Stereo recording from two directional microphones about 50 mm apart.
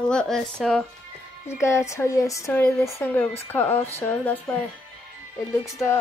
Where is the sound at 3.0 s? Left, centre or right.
Left.